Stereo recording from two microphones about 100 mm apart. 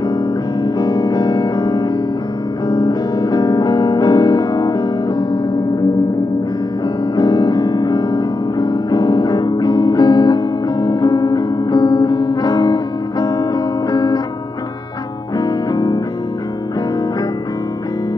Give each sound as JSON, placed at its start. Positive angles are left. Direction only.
{"t": 0.7, "sound": "music", "side_deg": 45}
{"t": 7.2, "sound": "music", "side_deg": 45}
{"t": 15.4, "sound": "music", "side_deg": 40}